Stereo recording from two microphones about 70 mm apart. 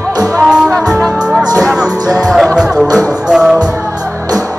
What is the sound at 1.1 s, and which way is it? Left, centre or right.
Music, centre.